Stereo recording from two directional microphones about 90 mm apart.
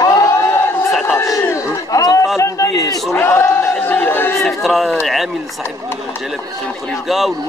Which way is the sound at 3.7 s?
20° left (ahead or behind).